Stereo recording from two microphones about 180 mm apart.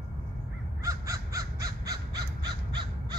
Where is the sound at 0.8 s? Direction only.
15° right (ahead or behind).